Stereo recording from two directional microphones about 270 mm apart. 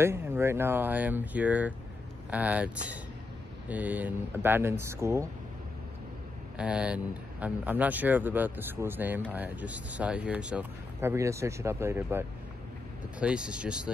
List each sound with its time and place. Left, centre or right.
0.0 s speech: centre
6.6 s speech: centre